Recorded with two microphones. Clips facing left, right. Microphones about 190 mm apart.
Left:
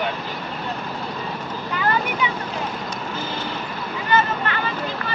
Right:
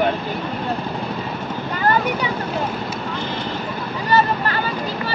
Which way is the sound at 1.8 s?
40° right (ahead or behind).